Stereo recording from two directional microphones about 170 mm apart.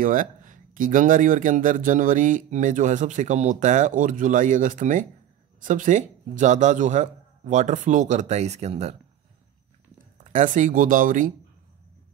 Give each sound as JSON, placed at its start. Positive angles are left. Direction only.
{"t": 0.0, "sound": "speech", "side_deg": -50}
{"t": 10.3, "sound": "speech", "side_deg": -50}